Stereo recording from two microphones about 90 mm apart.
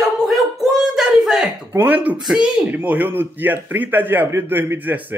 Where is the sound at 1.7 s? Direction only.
20° right (ahead or behind).